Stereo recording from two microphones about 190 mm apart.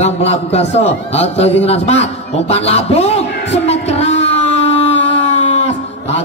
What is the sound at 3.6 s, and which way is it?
Music, 35° left (ahead or behind).